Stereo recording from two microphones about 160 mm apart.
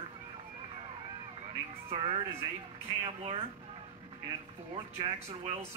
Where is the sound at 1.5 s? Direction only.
35° right (ahead or behind).